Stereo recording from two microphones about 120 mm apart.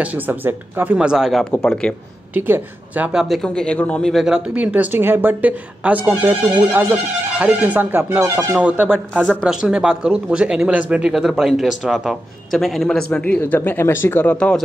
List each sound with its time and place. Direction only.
0.0 s speech: 15° right (ahead or behind)
0.9 s speech: 5° right (ahead or behind)
2.3 s speech: 15° right (ahead or behind)
3.4 s speech: 10° left (ahead or behind)